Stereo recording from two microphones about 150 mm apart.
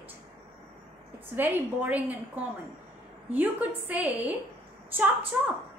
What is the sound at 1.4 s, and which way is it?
A woman's voice, 10° right (ahead or behind).